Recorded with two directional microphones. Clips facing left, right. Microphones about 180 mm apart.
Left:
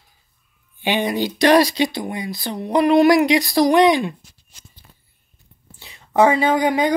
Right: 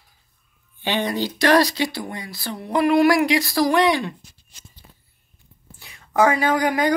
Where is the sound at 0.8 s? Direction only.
15° left (ahead or behind).